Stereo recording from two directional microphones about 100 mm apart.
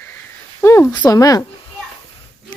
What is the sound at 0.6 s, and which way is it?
Speech, 20° left (ahead or behind).